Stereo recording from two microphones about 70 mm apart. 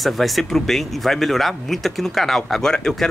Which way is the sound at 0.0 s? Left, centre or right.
Centre.